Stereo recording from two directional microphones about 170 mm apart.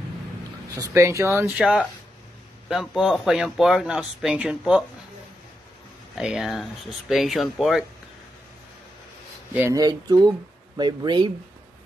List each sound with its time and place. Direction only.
0.7 s speech: 15° right (ahead or behind)
1.6 s speech: 5° right (ahead or behind)
6.1 s speech: 5° right (ahead or behind)
9.5 s speech: 15° right (ahead or behind)